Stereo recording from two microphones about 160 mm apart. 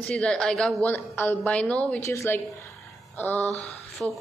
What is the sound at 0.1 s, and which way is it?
A woman's voice, 5° left (ahead or behind).